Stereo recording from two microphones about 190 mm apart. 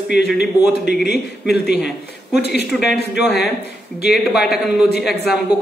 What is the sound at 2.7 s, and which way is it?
Speech, centre (ahead or behind).